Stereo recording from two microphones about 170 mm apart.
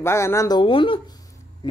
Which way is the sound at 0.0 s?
15° left (ahead or behind).